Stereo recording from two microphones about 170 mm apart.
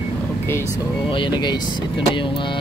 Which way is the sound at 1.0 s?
30° left (ahead or behind).